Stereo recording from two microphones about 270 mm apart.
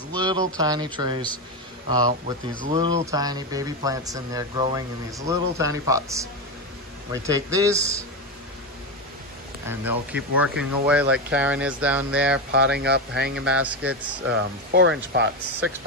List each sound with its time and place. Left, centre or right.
0.1 s a sound: centre
0.6 s speech: centre
2.6 s speech: right
3.1 s speech: centre
7.2 s speech: centre
9.7 s speech: centre
12.4 s speech: right